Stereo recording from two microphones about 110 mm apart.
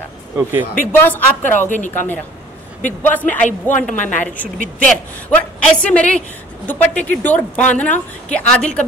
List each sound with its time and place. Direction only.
0.4 s speech: 20° right (ahead or behind)
0.9 s a woman's voice: 20° left (ahead or behind)